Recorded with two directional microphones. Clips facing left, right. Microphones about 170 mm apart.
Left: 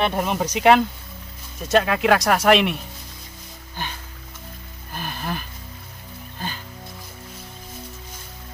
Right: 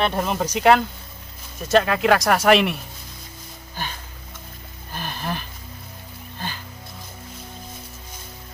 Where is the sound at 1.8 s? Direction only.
5° left (ahead or behind).